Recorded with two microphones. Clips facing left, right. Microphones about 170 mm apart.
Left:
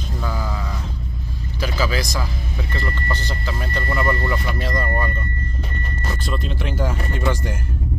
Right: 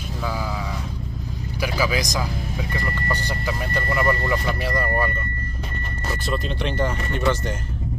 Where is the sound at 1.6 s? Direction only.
15° right (ahead or behind).